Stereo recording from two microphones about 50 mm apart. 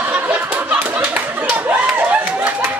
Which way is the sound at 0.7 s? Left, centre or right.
Right.